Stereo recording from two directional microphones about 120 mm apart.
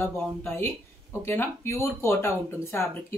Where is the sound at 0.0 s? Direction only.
20° left (ahead or behind).